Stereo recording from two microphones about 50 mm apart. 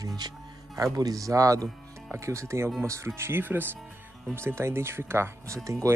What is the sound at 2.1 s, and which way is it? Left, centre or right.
Speech, right.